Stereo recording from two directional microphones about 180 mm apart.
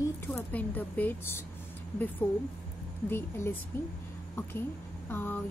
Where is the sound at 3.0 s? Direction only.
15° left (ahead or behind).